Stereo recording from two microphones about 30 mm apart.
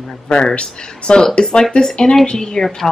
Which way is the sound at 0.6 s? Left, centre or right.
Left.